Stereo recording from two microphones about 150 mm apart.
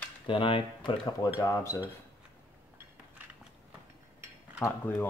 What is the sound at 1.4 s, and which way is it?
Speech, 20° left (ahead or behind).